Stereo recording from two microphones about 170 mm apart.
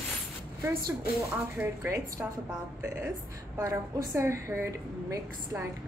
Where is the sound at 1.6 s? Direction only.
15° right (ahead or behind).